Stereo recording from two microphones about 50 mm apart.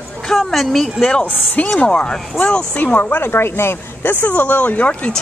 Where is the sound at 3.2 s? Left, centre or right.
Left.